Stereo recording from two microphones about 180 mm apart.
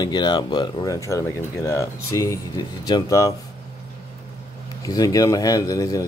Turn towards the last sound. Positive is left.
turn(degrees=20)  # may be behind; listen again after turning